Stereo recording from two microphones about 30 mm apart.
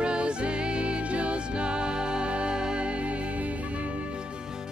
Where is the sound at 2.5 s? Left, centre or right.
Right.